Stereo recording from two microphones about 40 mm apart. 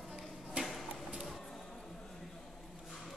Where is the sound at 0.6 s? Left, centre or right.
Right.